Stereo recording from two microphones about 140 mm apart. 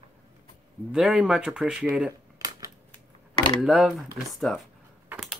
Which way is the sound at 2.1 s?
25° right (ahead or behind).